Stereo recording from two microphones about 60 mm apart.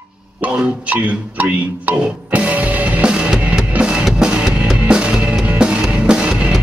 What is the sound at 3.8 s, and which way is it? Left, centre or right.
Drum kit, centre.